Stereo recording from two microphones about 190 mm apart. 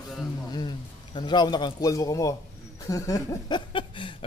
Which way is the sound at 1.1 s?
25° left (ahead or behind).